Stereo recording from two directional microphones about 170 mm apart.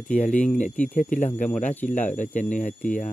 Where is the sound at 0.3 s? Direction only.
5° left (ahead or behind).